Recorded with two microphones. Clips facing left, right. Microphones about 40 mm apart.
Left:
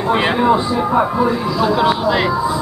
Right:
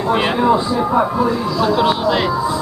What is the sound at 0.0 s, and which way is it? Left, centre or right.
Speech, centre.